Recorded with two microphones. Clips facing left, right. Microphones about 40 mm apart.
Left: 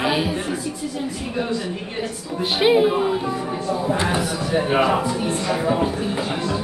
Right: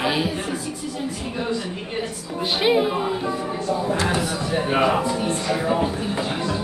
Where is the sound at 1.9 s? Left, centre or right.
Centre.